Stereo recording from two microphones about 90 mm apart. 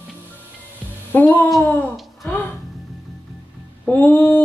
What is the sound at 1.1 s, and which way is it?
Speech, 20° left (ahead or behind).